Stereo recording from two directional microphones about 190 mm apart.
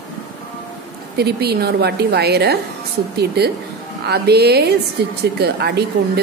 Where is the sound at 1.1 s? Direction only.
55° right (ahead or behind).